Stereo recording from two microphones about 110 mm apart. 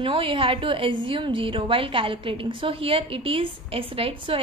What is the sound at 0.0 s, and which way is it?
A woman's voice, 55° right (ahead or behind).